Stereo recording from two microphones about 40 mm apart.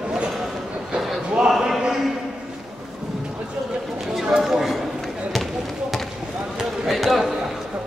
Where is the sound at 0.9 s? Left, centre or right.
Centre.